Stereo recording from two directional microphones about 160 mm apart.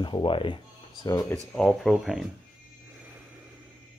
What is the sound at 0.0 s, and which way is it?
Speech, 30° left (ahead or behind).